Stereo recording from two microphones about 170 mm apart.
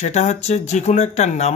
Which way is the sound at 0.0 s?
45° left (ahead or behind).